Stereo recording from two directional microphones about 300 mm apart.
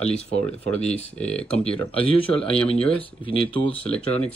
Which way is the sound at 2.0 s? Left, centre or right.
Centre.